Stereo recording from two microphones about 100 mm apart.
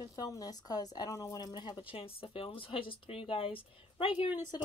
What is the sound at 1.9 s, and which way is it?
Speech, 65° left (ahead or behind).